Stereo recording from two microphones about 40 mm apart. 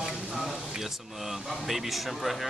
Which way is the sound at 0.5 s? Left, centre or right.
Centre.